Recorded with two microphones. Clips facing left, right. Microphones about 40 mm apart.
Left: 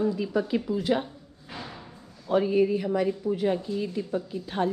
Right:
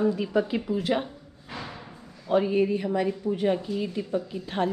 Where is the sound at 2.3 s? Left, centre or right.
Right.